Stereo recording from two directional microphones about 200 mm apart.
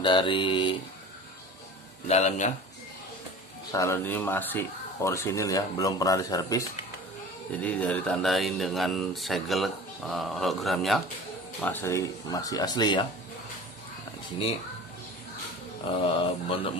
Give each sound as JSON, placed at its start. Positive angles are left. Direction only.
{"t": 0.0, "sound": "speech", "side_deg": 25}
{"t": 2.0, "sound": "a man's voice", "side_deg": 35}
{"t": 3.7, "sound": "speech", "side_deg": 15}
{"t": 7.6, "sound": "speech", "side_deg": 5}
{"t": 11.6, "sound": "speech", "side_deg": 10}
{"t": 15.8, "sound": "speech", "side_deg": 25}